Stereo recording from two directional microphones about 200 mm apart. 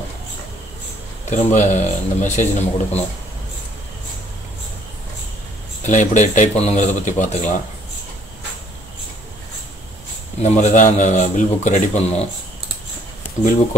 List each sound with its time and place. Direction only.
1.3 s speech: 35° left (ahead or behind)
5.9 s speech: 40° left (ahead or behind)
10.4 s speech: 35° left (ahead or behind)
13.4 s speech: 40° left (ahead or behind)